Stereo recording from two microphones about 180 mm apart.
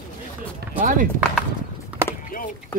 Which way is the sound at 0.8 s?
45° right (ahead or behind).